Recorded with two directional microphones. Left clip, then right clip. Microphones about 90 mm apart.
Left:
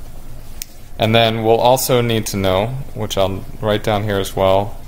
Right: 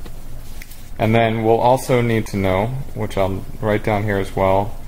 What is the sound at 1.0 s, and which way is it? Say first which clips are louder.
Speech: left 3 dB; 25° left (ahead or behind).